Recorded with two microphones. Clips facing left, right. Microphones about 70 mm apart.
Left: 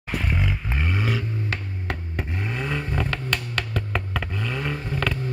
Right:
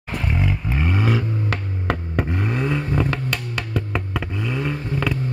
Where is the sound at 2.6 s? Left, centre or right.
Centre.